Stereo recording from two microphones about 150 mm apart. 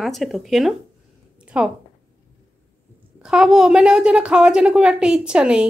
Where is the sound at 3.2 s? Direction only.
5° right (ahead or behind).